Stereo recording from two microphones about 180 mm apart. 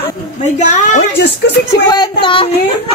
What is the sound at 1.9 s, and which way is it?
Speech, 25° left (ahead or behind).